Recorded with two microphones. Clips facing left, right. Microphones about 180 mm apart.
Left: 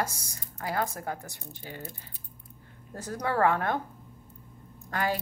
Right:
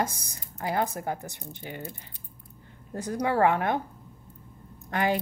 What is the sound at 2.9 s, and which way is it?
Speech, 15° right (ahead or behind).